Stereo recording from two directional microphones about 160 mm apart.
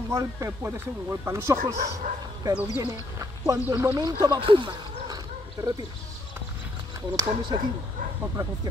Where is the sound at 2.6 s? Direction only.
20° right (ahead or behind).